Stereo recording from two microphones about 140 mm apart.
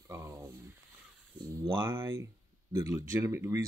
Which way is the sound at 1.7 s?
15° right (ahead or behind).